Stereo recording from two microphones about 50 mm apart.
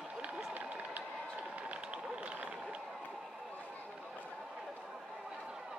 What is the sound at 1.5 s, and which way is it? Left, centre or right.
Run, right.